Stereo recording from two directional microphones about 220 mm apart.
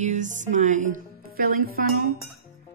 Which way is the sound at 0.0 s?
35° right (ahead or behind).